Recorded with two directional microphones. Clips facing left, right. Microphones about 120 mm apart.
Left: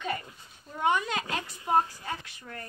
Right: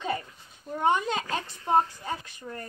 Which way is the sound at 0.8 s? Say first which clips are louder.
Right 2 dB; 30° right (ahead or behind).